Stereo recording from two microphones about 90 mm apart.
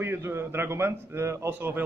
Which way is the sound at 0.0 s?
25° right (ahead or behind).